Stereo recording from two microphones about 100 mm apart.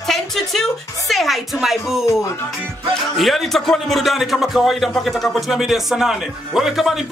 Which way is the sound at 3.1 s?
Centre (ahead or behind).